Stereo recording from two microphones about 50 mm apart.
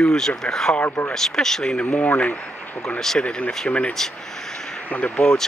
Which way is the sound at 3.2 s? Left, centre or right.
Left.